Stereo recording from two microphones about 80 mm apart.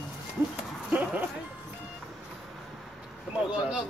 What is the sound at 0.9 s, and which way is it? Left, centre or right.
Speech, centre.